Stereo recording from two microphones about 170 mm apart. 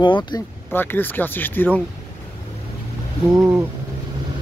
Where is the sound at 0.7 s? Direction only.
10° left (ahead or behind).